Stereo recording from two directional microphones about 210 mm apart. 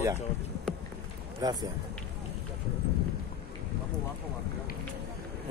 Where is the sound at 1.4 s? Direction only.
20° right (ahead or behind).